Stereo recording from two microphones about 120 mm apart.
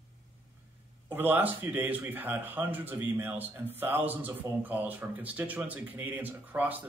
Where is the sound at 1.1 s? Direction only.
15° right (ahead or behind).